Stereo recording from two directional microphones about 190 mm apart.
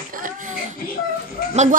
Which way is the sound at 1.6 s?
40° right (ahead or behind).